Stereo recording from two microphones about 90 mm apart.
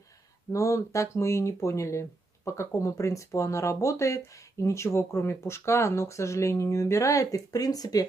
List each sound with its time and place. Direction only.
0.5 s speech: 35° left (ahead or behind)